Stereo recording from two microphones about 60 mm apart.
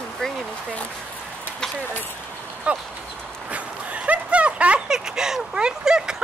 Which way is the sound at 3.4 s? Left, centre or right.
Right.